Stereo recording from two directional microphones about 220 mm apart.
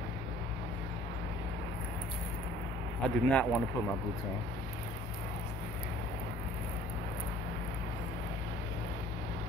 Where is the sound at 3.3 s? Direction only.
5° left (ahead or behind).